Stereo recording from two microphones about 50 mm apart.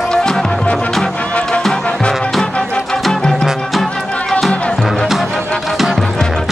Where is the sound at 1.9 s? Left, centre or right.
Centre.